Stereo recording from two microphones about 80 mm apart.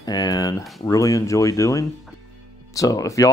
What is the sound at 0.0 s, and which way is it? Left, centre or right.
Speech, left.